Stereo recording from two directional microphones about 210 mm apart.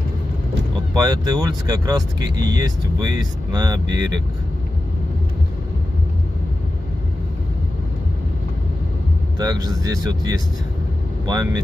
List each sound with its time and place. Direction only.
0.9 s speech: 20° right (ahead or behind)
9.4 s speech: 15° right (ahead or behind)